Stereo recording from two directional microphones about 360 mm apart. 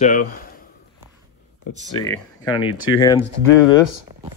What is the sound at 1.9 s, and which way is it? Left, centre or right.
Speech, centre.